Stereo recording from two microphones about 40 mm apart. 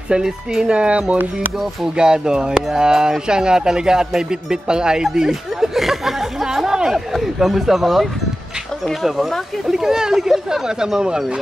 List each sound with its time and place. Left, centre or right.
0.1 s speech: right
2.0 s speech: centre
5.8 s a sound: centre
6.4 s chatter: centre
7.2 s speech: centre